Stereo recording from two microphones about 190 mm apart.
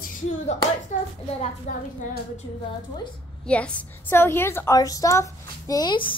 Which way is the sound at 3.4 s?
5° left (ahead or behind).